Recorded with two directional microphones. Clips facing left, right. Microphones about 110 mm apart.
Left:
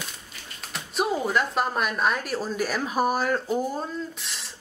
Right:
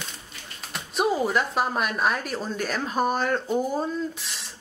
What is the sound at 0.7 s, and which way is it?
Speech, centre (ahead or behind).